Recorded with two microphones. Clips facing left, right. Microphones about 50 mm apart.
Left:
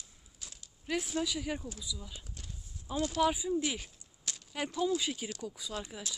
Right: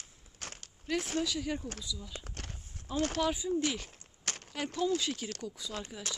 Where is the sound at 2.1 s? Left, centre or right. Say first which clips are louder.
Right 5 dB; right.